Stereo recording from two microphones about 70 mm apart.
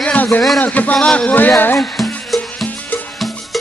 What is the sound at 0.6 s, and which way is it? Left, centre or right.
Speech, left.